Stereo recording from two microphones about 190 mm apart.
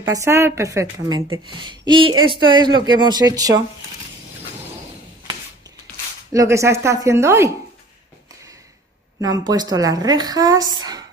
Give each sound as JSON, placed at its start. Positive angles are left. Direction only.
{"t": 0.1, "sound": "a woman's voice", "side_deg": -15}
{"t": 6.3, "sound": "speech", "side_deg": -15}
{"t": 9.2, "sound": "a woman's voice", "side_deg": -20}